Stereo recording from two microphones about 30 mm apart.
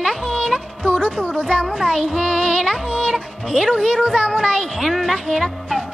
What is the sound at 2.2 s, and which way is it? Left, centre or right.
Speech, left.